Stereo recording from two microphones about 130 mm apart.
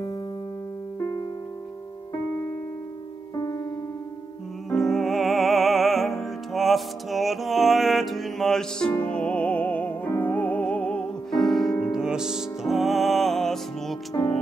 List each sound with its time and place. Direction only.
3.3 s music: 25° left (ahead or behind)
4.6 s music: centre (ahead or behind)